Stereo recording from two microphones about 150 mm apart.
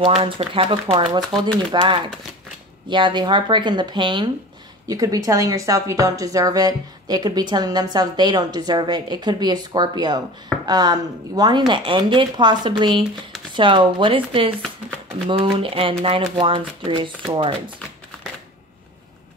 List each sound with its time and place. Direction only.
0.0 s speech: 35° right (ahead or behind)